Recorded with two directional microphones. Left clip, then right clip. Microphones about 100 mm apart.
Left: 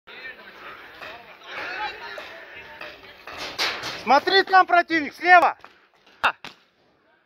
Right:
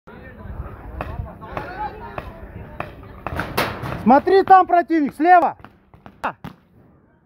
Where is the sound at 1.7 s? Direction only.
20° right (ahead or behind).